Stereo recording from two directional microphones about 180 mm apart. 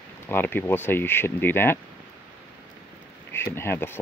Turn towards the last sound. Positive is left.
turn(degrees=15)  # may be behind; listen again after turning